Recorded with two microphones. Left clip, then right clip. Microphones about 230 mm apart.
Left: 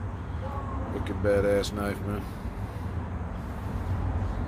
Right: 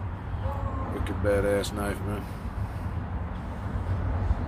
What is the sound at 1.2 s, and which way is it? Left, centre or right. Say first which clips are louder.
Speech: left 1 dB; left.